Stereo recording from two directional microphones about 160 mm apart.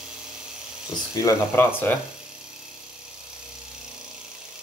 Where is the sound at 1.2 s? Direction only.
15° left (ahead or behind).